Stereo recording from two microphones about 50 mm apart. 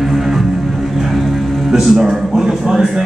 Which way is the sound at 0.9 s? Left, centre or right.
Centre.